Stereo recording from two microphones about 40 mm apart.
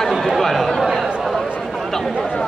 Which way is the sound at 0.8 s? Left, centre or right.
Centre.